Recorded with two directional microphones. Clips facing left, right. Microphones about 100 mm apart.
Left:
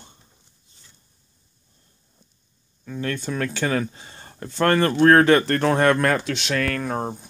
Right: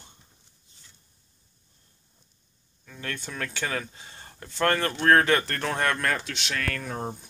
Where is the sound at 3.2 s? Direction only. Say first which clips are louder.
Left 7 dB; 25° left (ahead or behind).